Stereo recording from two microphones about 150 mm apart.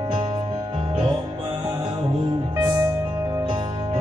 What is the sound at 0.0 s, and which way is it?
Music, 35° right (ahead or behind).